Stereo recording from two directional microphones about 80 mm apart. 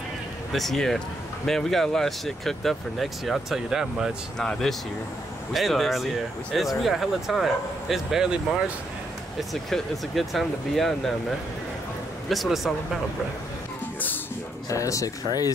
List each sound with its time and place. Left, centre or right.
0.5 s speech: centre
4.4 s speech: centre
9.4 s speech: centre
14.7 s speech: left